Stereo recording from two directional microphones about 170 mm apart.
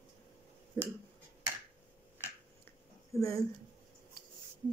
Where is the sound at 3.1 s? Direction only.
20° left (ahead or behind).